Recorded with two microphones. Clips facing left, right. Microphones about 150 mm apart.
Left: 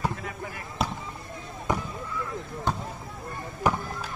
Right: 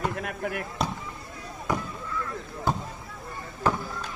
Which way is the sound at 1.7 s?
20° left (ahead or behind).